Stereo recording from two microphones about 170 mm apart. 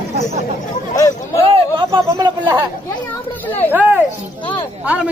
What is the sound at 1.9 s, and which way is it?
Speech, 20° right (ahead or behind).